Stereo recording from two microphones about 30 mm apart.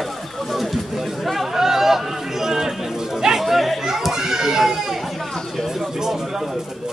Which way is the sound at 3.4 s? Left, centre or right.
Centre.